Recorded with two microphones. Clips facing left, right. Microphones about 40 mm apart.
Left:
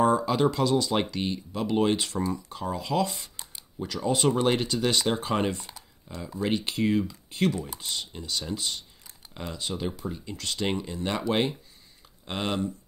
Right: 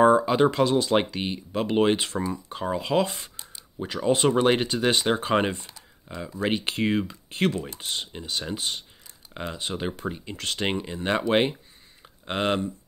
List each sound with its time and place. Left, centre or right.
0.0 s speech: right
6.4 s speech: right